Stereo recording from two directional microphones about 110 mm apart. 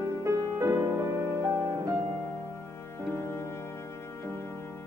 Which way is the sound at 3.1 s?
25° left (ahead or behind).